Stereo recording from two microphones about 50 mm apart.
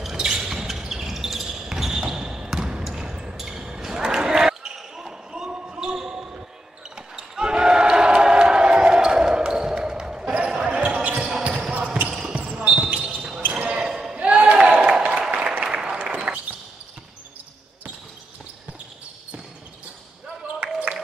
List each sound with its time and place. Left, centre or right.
0.0 s basketball bounce: centre
10.8 s basketball bounce: right
13.8 s basketball bounce: centre
14.1 s a sound: right
15.6 s applause: centre
20.6 s a sound: right